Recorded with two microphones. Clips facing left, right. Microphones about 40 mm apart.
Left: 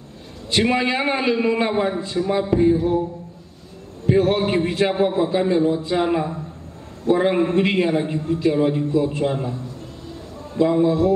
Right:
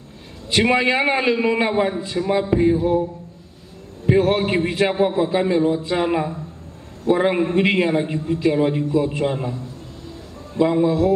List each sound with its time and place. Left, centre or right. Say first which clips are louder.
0.5 s a man's voice: right 2 dB; centre
4.0 s a man's voice: right 1 dB; centre
10.6 s a man's voice: even; centre